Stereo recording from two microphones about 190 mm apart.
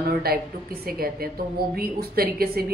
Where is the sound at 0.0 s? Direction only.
55° right (ahead or behind).